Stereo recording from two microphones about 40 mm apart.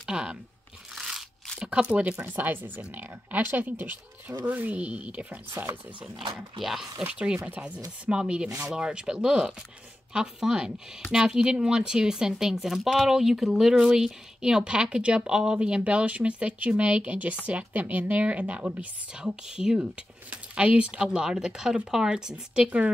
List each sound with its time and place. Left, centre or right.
0.0 s speech: right
0.9 s crunch: centre
1.7 s speech: right
2.4 s a woman's voice: right
5.5 s speech: right
6.6 s speech: centre
7.1 s speech: right
8.2 s speech: right
13.7 s speech: right
17.7 s a woman's voice: right
18.2 s speech: right
19.1 s speech: centre
20.2 s speech: right